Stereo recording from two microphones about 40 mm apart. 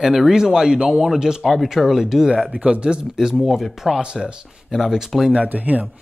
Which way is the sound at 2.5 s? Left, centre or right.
Right.